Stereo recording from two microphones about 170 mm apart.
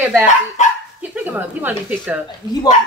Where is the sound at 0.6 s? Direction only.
45° left (ahead or behind).